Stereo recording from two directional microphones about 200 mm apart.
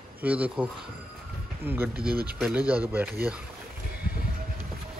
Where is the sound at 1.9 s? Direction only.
50° right (ahead or behind).